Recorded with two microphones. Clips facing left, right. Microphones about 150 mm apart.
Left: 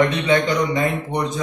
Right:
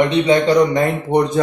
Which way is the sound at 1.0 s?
55° right (ahead or behind).